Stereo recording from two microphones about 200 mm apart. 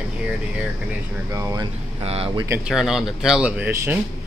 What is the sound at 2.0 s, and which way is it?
Speech, 30° right (ahead or behind).